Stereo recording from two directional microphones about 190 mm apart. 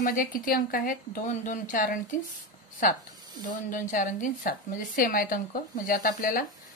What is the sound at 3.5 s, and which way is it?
Speech, 45° left (ahead or behind).